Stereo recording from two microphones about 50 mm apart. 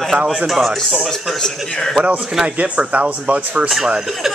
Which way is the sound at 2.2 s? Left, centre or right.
Centre.